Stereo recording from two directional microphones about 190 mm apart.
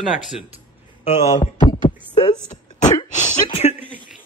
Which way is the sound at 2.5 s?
40° left (ahead or behind).